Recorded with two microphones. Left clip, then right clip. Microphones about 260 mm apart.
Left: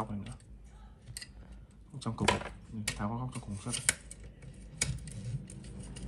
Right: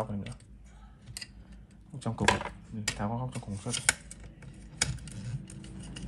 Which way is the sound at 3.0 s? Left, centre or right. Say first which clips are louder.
Right 3 dB; right.